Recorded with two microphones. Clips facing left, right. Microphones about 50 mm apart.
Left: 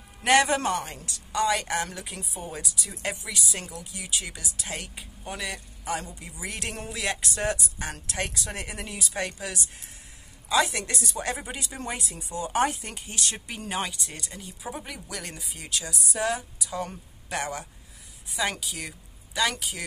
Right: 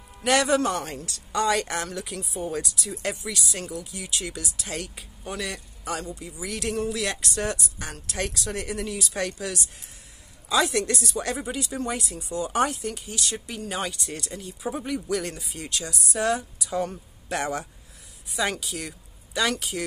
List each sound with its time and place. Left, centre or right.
0.2 s speech: left
0.7 s speech: centre
1.8 s speech: centre
2.3 s speech: centre
6.2 s speech: left
7.0 s speech: centre
8.2 s speech: left
11.1 s speech: centre
11.5 s speech: left
13.8 s speech: centre